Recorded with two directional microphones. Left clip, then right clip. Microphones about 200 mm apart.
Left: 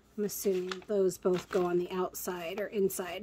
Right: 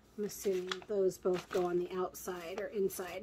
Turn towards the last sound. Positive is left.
turn(degrees=45)  # may be behind; listen again after turning